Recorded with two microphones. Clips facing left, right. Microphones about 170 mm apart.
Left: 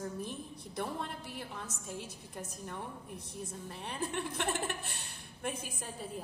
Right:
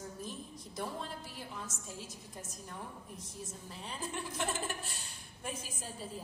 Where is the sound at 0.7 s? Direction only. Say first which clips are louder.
Left 2 dB; 60° left (ahead or behind).